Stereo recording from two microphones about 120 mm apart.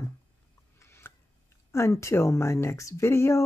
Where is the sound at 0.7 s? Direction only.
20° left (ahead or behind).